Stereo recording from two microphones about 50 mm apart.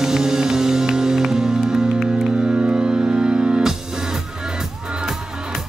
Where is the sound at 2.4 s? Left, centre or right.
Right.